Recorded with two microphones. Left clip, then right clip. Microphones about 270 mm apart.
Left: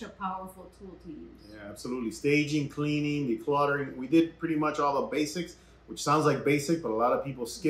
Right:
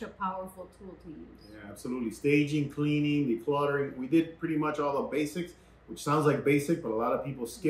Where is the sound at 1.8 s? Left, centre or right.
Centre.